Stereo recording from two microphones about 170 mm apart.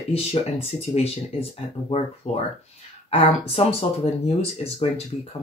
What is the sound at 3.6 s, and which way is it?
Speech, 40° left (ahead or behind).